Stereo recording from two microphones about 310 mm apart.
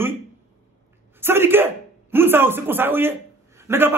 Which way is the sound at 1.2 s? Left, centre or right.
Centre.